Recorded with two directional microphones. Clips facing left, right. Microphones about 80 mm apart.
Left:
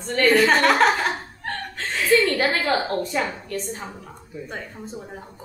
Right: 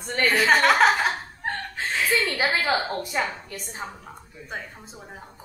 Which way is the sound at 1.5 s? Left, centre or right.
Centre.